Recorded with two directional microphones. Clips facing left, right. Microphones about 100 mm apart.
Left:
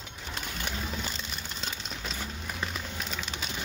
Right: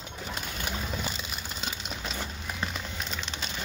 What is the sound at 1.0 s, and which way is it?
Music, 5° right (ahead or behind).